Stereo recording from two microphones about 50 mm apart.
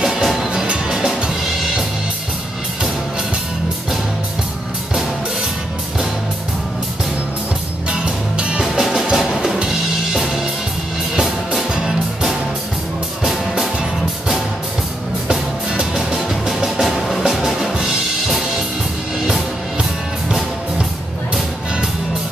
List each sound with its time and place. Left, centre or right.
0.0 s music: centre
7.9 s music: centre
11.7 s music: centre
15.2 s music: centre